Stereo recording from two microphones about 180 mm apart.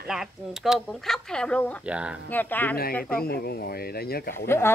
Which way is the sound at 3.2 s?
60° left (ahead or behind).